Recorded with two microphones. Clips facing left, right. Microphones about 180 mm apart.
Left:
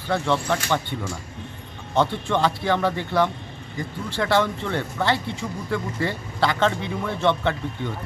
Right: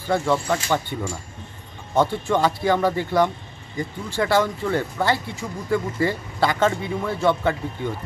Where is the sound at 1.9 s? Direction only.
10° right (ahead or behind).